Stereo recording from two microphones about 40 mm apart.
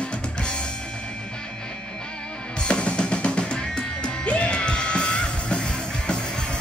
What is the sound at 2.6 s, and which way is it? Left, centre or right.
Music, left.